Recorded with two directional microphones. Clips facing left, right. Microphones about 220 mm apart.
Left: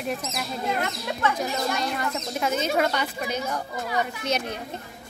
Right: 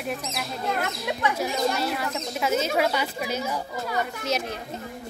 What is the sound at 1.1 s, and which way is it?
Speech, 15° right (ahead or behind).